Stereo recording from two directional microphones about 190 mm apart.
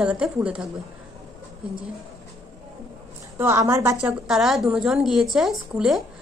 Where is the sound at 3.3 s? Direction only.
15° right (ahead or behind).